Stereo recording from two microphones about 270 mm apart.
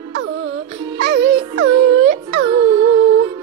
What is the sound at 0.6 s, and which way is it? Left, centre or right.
Music, centre.